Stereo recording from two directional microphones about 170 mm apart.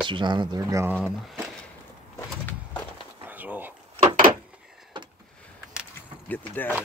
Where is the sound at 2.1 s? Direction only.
10° left (ahead or behind).